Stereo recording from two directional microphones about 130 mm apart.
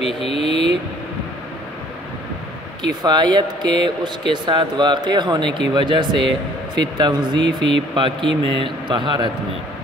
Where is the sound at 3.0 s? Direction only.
35° right (ahead or behind).